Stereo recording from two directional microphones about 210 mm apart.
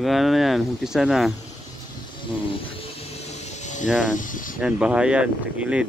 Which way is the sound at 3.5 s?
35° left (ahead or behind).